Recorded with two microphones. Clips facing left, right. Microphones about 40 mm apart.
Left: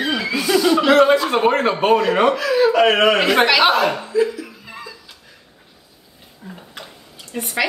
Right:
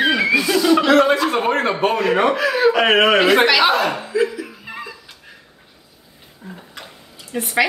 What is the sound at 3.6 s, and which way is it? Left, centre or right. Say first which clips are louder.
Speech: left 1 dB; left.